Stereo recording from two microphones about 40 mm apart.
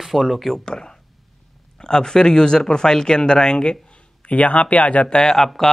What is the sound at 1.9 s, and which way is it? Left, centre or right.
Speech, centre.